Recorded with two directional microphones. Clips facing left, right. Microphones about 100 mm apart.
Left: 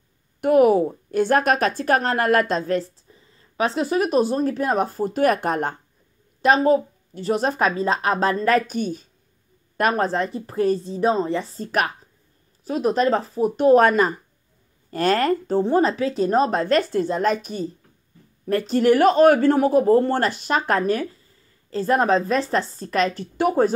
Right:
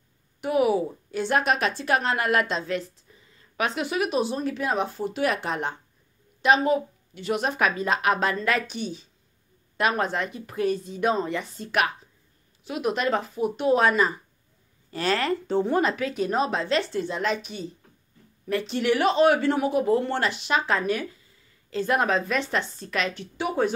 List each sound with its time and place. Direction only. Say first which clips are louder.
0.4 s a woman's voice: left 7 dB; 50° left (ahead or behind)
21.6 s a woman's voice: left 5 dB; 35° left (ahead or behind)